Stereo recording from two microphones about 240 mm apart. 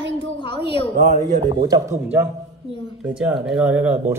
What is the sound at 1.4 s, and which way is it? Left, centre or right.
Speech, centre.